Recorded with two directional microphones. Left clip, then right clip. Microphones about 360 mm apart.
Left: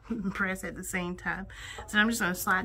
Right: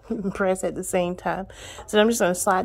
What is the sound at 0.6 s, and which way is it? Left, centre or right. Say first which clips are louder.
A woman's voice: right 11 dB; centre.